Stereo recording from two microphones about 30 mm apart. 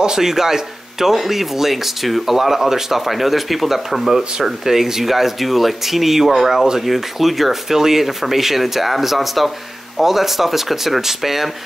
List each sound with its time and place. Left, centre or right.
0.0 s speech: centre
4.4 s speech: centre
7.7 s speech: centre